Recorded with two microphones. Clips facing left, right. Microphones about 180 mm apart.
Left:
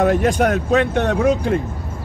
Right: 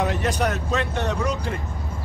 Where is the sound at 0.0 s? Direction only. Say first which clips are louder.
Left 7 dB; 50° left (ahead or behind).